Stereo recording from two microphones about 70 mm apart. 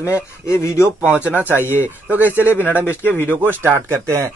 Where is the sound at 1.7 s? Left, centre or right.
Right.